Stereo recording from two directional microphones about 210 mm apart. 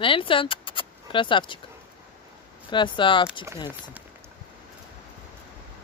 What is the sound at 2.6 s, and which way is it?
Speech, 25° left (ahead or behind).